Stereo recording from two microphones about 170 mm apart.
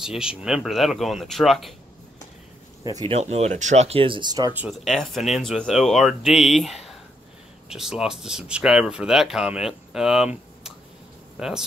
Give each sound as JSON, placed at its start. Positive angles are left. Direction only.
{"t": 0.0, "sound": "speech", "side_deg": -5}
{"t": 2.8, "sound": "speech", "side_deg": -20}
{"t": 3.1, "sound": "speech", "side_deg": -40}
{"t": 4.6, "sound": "speech", "side_deg": 0}